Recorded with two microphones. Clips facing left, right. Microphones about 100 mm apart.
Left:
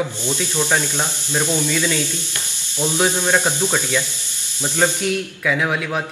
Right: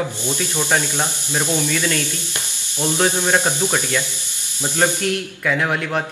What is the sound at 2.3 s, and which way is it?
Speech, 20° right (ahead or behind).